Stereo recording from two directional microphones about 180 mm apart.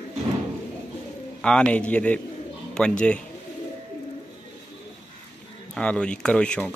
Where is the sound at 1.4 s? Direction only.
5° left (ahead or behind).